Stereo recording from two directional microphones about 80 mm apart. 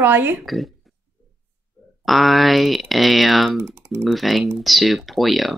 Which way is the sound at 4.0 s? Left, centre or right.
Centre.